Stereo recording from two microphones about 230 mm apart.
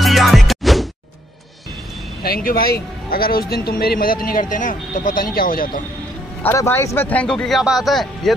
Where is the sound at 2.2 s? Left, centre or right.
Left.